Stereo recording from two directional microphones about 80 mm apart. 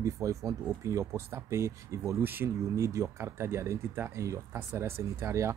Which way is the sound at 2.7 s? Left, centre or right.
Right.